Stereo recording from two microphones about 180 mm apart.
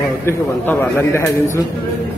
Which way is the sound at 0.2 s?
10° left (ahead or behind).